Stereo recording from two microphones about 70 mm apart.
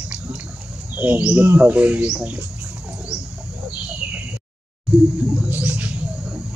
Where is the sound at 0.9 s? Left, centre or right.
Right.